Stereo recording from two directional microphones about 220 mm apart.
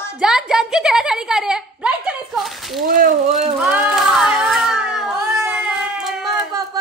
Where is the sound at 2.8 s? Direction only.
40° right (ahead or behind).